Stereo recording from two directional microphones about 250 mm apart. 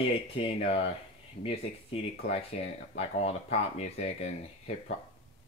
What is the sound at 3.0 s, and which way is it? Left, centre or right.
Speech, left.